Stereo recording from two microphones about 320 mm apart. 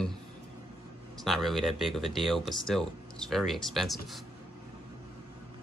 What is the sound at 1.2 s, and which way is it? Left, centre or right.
Speech, centre.